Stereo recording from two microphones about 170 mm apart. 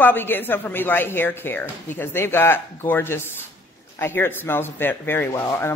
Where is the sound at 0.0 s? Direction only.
10° left (ahead or behind).